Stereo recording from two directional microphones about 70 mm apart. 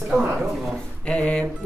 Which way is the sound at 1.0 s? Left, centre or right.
Centre.